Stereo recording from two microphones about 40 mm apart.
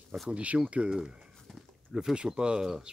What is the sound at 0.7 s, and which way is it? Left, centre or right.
Speech, right.